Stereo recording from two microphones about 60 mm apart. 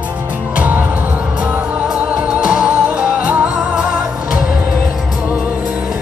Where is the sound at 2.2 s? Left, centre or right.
Centre.